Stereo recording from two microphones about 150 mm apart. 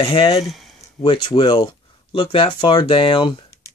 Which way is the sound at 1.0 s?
35° left (ahead or behind).